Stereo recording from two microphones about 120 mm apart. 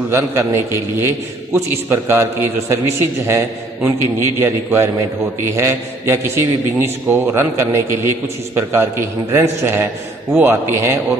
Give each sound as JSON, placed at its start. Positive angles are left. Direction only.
{"t": 0.1, "sound": "a man's voice", "side_deg": -20}